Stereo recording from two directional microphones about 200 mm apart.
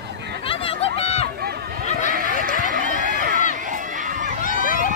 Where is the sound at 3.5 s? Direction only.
40° right (ahead or behind).